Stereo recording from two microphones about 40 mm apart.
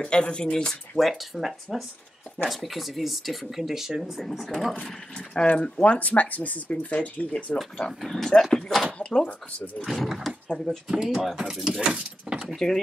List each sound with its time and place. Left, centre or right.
0.0 s speech: left
0.9 s speech: centre
4.8 s speech: centre
5.5 s speech: left
8.0 s speech: centre
8.9 s speech: left
9.8 s speech: centre
11.0 s speech: centre
12.5 s speech: centre